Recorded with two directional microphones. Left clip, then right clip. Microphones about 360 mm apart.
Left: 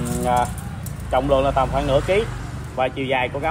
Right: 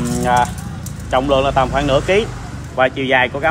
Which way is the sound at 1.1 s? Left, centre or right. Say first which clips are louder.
Right 3 dB; right.